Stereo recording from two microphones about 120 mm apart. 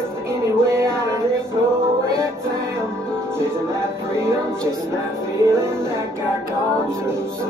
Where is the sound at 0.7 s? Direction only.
25° right (ahead or behind).